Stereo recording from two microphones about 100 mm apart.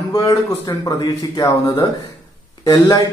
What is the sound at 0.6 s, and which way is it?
Speech, 40° left (ahead or behind).